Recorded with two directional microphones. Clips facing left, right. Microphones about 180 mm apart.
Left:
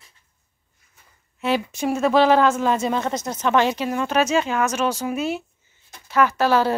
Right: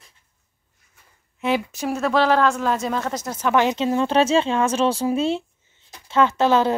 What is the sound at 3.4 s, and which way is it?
A woman's voice, 15° right (ahead or behind).